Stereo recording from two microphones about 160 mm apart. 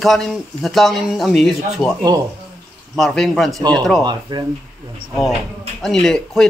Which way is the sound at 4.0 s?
25° right (ahead or behind).